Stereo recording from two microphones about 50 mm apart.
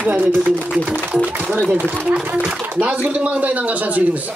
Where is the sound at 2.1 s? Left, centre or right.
Right.